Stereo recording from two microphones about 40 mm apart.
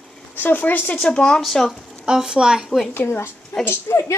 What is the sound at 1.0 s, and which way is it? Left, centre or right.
Speech, centre.